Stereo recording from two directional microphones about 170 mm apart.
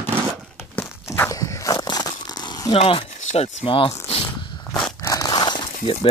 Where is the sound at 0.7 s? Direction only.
15° left (ahead or behind).